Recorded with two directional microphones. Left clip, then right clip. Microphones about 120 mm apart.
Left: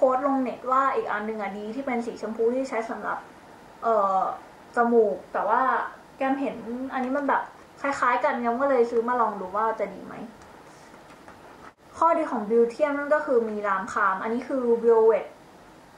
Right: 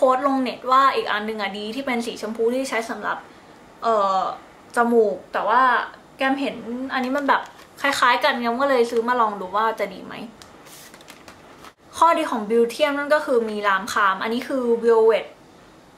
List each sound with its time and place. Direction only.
0.0 s a woman's voice: 30° right (ahead or behind)
11.9 s a woman's voice: 30° right (ahead or behind)